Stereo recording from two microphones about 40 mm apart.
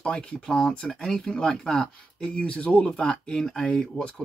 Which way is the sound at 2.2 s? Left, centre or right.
Left.